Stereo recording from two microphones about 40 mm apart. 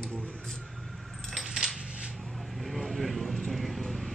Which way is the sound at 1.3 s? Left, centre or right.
Centre.